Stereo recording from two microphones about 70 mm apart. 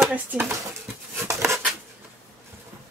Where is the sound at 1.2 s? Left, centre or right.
Right.